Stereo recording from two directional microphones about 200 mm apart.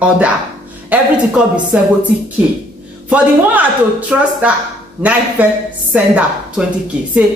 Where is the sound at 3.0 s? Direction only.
5° right (ahead or behind).